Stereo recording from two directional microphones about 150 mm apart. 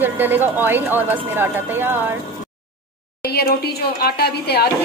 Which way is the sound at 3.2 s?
90° left.